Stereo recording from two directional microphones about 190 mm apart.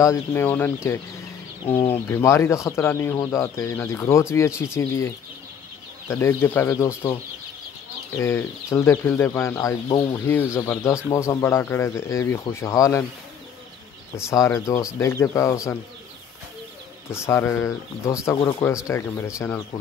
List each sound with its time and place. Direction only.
0.0 s speech: 15° left (ahead or behind)
8.2 s speech: 15° left (ahead or behind)
14.1 s speech: 15° left (ahead or behind)
17.1 s speech: 15° left (ahead or behind)